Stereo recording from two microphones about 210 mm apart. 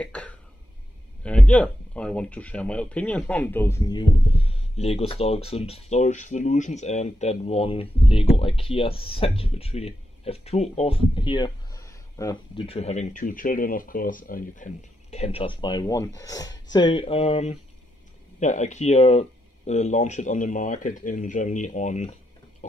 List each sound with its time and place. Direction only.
0.0 s throat clearing: 5° left (ahead or behind)
1.2 s speech: 5° left (ahead or behind); by 22.1 s 35° left (ahead or behind)